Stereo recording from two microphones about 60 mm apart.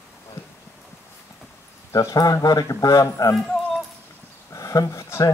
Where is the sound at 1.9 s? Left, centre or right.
Left.